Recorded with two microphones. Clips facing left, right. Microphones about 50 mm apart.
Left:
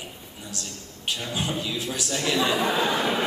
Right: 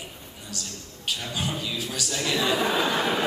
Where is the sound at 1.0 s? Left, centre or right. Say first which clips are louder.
Left 1 dB; centre.